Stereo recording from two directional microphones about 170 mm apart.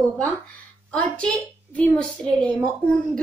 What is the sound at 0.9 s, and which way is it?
A woman's voice, 5° left (ahead or behind).